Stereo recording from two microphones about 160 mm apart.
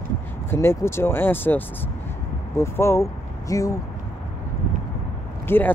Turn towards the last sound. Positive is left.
turn(degrees=15)  # may be behind; listen again after turning